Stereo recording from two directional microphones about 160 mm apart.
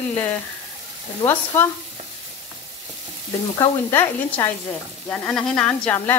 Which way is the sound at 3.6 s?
15° left (ahead or behind).